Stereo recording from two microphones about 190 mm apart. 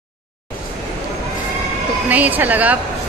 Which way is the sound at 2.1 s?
10° right (ahead or behind).